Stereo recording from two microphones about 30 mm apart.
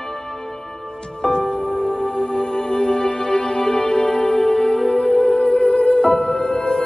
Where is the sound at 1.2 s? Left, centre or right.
Left.